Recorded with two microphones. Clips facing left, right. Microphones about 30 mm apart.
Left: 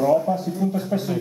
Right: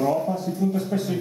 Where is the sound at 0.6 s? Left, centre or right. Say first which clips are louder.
Right 1 dB; left.